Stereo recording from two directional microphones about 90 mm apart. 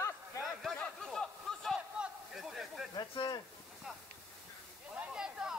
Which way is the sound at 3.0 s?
50° left (ahead or behind).